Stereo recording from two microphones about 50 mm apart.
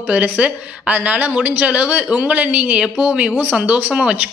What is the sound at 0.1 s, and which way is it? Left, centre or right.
A woman's voice, right.